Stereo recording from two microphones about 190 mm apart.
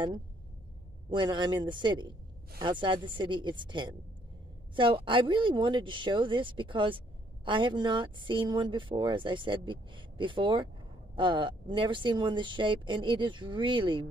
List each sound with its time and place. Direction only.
1.1 s speech: 25° right (ahead or behind)